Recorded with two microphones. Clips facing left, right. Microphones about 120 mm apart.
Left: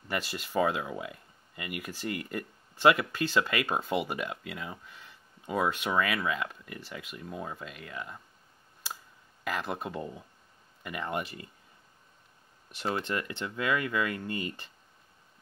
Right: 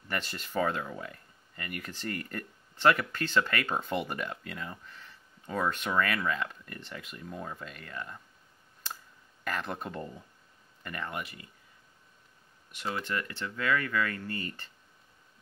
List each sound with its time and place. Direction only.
0.1 s speech: 10° left (ahead or behind)
8.8 s a sound: 10° left (ahead or behind)
9.4 s speech: 10° left (ahead or behind)
11.1 s speech: 30° left (ahead or behind)
12.7 s speech: 30° left (ahead or behind)